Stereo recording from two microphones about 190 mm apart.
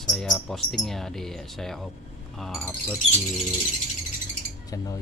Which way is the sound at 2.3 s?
Centre (ahead or behind).